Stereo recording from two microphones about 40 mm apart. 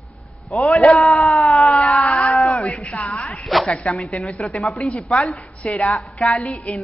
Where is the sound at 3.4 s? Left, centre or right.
Centre.